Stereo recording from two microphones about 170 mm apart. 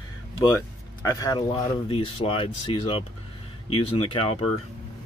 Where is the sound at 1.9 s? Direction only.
30° left (ahead or behind).